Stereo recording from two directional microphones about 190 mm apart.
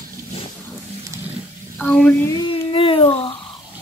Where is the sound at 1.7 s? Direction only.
5° left (ahead or behind).